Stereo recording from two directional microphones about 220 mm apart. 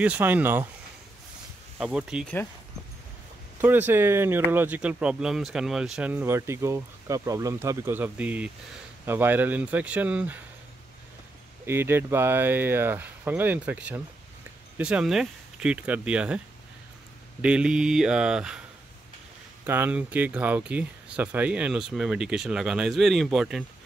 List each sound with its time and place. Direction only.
0.0 s speech: 5° right (ahead or behind)
1.8 s speech: 5° right (ahead or behind)
3.6 s speech: 10° right (ahead or behind)
11.6 s speech: 10° right (ahead or behind)
17.4 s speech: 5° right (ahead or behind)
19.6 s speech: 10° right (ahead or behind)